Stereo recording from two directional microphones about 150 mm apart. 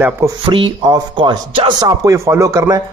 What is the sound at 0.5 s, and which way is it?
Speech, 30° right (ahead or behind).